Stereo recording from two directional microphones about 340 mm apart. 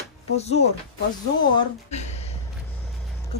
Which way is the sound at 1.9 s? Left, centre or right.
Centre.